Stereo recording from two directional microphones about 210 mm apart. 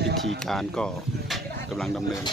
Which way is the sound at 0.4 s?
Centre (ahead or behind).